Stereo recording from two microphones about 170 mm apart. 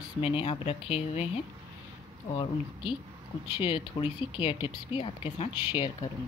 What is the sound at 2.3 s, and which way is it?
Speech, 30° left (ahead or behind).